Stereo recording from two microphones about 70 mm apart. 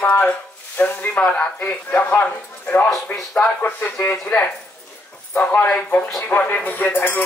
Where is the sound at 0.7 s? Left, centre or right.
Left.